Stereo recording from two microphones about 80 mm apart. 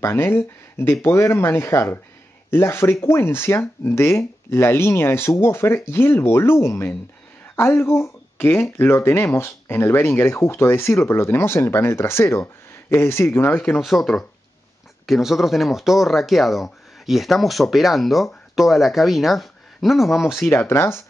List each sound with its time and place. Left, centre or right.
0.0 s speech: left
13.7 s speech: centre
20.4 s speech: left